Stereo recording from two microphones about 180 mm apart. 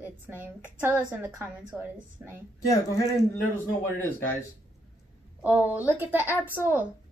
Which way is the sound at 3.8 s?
10° left (ahead or behind).